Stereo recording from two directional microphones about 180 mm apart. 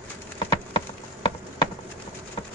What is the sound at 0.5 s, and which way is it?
Clip-clop, 25° left (ahead or behind).